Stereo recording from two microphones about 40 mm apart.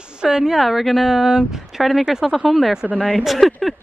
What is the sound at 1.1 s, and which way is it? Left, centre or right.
Speech, centre.